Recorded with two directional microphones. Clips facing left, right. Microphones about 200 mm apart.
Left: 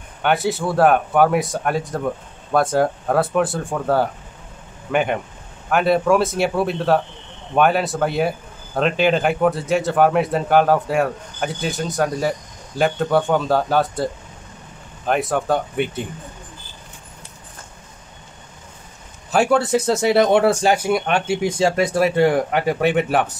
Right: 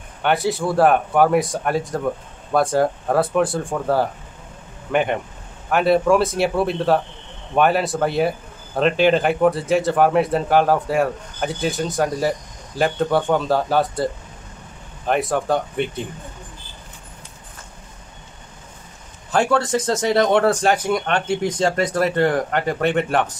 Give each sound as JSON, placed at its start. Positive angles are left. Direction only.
{"t": 0.2, "sound": "a man's voice", "side_deg": 0}
{"t": 15.0, "sound": "a man's voice", "side_deg": 0}
{"t": 19.3, "sound": "speech", "side_deg": 10}